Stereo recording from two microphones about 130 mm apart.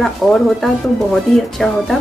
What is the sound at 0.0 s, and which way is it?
A woman's voice, 5° left (ahead or behind).